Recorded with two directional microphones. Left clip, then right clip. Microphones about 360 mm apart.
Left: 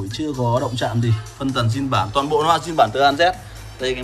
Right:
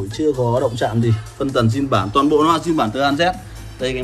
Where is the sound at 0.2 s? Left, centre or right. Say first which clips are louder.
Right 4 dB; left.